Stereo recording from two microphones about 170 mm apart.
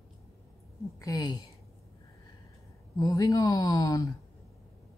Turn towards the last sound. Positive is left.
turn(degrees=20)  # may be behind; listen again after turning